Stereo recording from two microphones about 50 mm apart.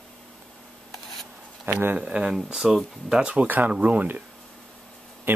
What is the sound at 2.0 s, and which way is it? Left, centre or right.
Speech, right.